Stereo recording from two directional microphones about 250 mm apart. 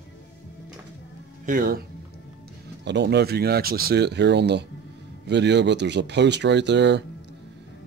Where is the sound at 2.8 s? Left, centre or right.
Right.